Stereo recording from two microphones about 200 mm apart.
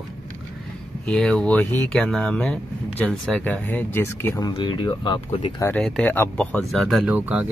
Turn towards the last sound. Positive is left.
turn(degrees=-10)  # may be behind; listen again after turning